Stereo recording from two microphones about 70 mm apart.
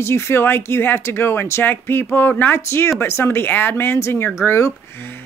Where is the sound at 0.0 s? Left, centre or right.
Left.